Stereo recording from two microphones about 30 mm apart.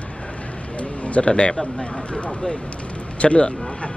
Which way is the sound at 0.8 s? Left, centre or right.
Left.